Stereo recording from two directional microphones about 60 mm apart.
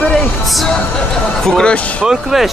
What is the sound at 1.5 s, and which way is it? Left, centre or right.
Speech, centre.